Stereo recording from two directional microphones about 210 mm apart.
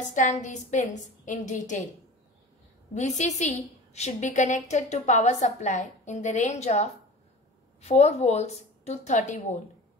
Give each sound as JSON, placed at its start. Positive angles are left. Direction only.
{"t": 0.1, "sound": "a woman's voice", "side_deg": 35}
{"t": 2.9, "sound": "a woman's voice", "side_deg": 35}